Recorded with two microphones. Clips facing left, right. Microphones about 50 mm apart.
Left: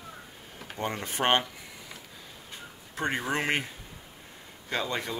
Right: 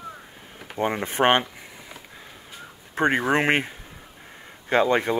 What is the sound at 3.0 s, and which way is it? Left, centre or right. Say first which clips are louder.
Speech: right 8 dB; right.